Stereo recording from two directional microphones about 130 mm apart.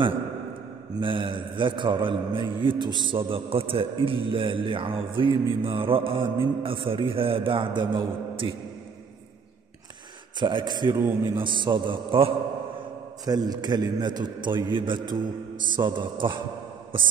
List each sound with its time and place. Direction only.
1.0 s a man's voice: 40° right (ahead or behind)
10.4 s a man's voice: 35° right (ahead or behind)
13.2 s a man's voice: 30° right (ahead or behind)